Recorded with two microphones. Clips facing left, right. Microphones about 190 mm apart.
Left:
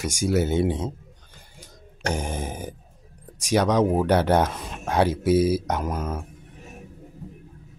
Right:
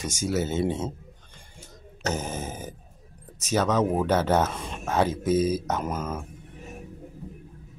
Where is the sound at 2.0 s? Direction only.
15° left (ahead or behind).